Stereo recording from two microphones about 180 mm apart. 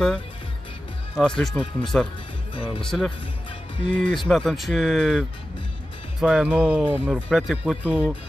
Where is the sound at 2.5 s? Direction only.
30° left (ahead or behind).